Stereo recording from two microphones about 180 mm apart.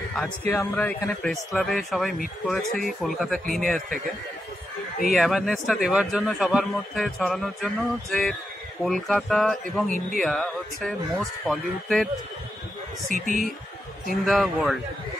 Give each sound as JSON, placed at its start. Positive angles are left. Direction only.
{"t": 0.1, "sound": "a man's voice", "side_deg": 5}
{"t": 5.1, "sound": "a man's voice", "side_deg": 0}
{"t": 13.1, "sound": "speech", "side_deg": -45}
{"t": 14.1, "sound": "a man's voice", "side_deg": 0}